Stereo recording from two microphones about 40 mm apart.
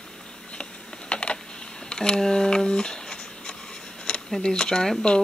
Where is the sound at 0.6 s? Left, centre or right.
Left.